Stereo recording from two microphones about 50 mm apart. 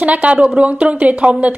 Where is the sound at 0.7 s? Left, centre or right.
Right.